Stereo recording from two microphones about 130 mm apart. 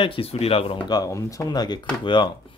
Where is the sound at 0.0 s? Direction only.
45° left (ahead or behind).